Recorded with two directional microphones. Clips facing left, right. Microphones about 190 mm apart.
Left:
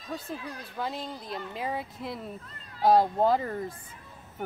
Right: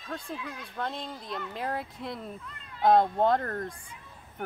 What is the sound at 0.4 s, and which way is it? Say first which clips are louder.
Speech: even; 35° left (ahead or behind).